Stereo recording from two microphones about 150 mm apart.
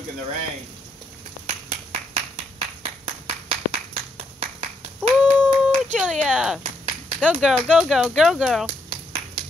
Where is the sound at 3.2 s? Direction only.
45° right (ahead or behind).